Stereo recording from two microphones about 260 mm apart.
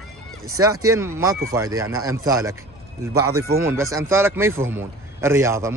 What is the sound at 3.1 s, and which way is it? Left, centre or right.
Speech, right.